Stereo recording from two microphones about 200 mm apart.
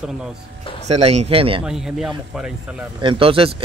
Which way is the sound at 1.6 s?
5° right (ahead or behind).